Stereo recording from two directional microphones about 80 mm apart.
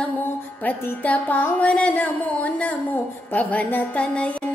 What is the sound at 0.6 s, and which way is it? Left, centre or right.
Music, left.